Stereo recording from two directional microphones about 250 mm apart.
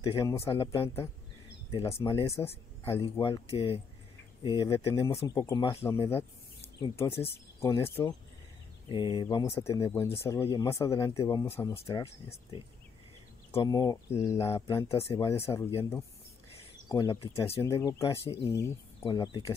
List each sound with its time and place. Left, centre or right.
0.0 s speech: centre